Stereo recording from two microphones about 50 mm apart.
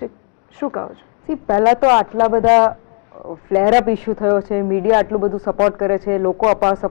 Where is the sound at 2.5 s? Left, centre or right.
Right.